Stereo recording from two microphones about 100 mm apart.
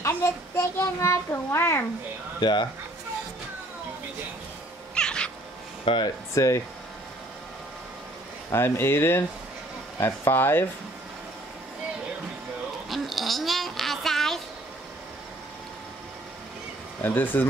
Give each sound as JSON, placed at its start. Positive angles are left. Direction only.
{"t": 0.0, "sound": "child singing", "side_deg": 25}
{"t": 2.4, "sound": "speech", "side_deg": 50}
{"t": 4.9, "sound": "cat", "side_deg": 10}
{"t": 5.9, "sound": "speech", "side_deg": 50}
{"t": 6.3, "sound": "speech", "side_deg": 30}
{"t": 8.5, "sound": "speech", "side_deg": 25}
{"t": 12.9, "sound": "a sound", "side_deg": 0}
{"t": 17.0, "sound": "speech", "side_deg": 20}